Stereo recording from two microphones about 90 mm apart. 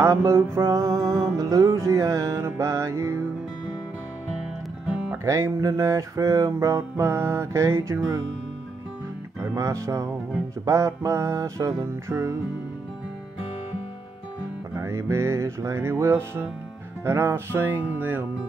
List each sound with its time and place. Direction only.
0.0 s music: 30° right (ahead or behind)
4.9 s music: 10° right (ahead or behind)
5.2 s music: 35° right (ahead or behind)
9.6 s music: 35° right (ahead or behind)
14.8 s music: 30° right (ahead or behind)
17.0 s speech: 25° right (ahead or behind)